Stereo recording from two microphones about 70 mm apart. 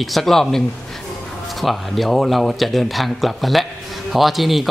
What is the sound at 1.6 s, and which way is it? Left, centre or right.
A man's voice, centre.